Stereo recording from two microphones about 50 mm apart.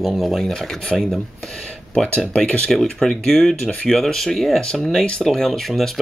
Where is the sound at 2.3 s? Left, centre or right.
Left.